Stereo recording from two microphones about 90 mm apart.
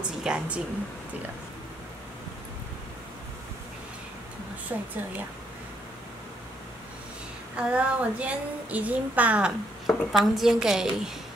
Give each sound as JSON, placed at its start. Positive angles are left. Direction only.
{"t": 0.2, "sound": "speech", "side_deg": -10}
{"t": 4.7, "sound": "a woman's voice", "side_deg": -20}
{"t": 7.5, "sound": "speech", "side_deg": -15}
{"t": 9.8, "sound": "a woman's voice", "side_deg": 0}